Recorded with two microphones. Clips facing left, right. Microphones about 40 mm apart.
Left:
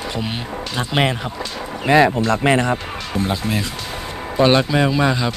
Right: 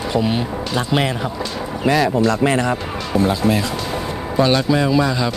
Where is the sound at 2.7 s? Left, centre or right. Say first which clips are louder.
Right 3 dB; left.